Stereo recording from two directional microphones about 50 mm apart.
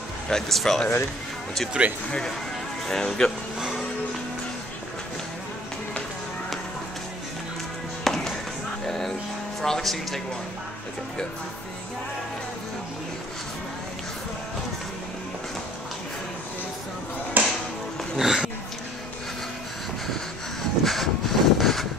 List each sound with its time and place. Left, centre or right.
0.3 s speech: centre
1.8 s speech: centre
2.9 s speech: centre
3.5 s music: centre
8.0 s music: centre
9.6 s speech: centre
17.4 s music: right
18.1 s dog: centre
20.8 s vehicle: centre